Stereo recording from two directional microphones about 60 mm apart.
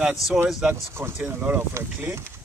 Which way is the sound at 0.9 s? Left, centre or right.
Right.